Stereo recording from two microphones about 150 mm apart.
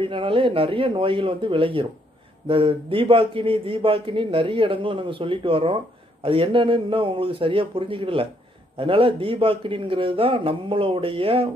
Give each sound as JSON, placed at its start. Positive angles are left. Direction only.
{"t": 0.0, "sound": "a man's voice", "side_deg": -35}